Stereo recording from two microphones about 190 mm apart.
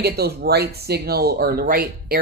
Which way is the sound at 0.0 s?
55° right (ahead or behind).